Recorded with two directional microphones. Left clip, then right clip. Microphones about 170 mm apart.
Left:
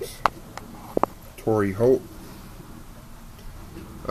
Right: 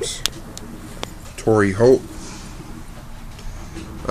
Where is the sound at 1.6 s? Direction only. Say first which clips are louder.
Right 6 dB; 5° right (ahead or behind).